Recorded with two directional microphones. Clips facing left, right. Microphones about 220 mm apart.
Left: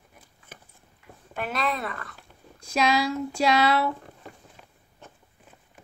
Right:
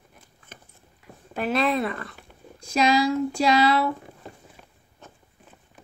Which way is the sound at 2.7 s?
Centre (ahead or behind).